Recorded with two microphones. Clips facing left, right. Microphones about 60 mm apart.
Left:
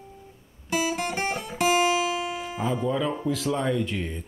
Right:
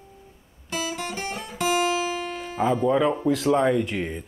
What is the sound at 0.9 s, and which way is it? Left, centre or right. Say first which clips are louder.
Guitar: left 3 dB; left.